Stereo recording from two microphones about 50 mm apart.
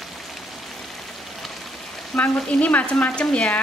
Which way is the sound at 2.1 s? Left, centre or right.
Left.